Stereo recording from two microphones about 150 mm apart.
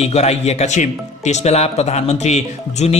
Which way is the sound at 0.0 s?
45° left (ahead or behind).